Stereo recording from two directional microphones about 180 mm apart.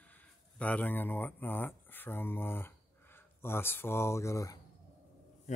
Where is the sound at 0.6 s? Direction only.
10° left (ahead or behind).